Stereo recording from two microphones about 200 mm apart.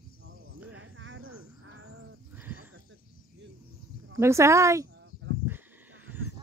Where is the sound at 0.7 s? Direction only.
70° right (ahead or behind).